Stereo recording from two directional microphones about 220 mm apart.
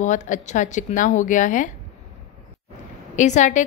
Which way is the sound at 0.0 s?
35° left (ahead or behind).